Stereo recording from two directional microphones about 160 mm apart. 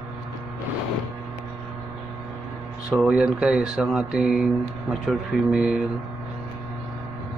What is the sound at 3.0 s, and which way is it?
Speech, 5° right (ahead or behind).